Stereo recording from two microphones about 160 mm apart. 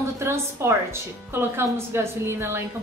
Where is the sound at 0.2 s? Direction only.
15° right (ahead or behind).